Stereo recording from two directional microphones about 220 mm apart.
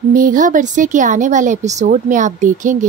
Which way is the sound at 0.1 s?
35° right (ahead or behind).